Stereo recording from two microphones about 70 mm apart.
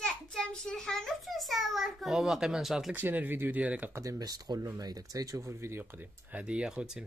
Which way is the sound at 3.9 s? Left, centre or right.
Right.